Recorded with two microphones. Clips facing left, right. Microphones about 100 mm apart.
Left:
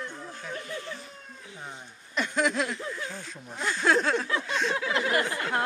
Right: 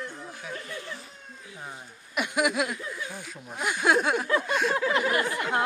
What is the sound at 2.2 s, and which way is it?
Speech, 10° right (ahead or behind).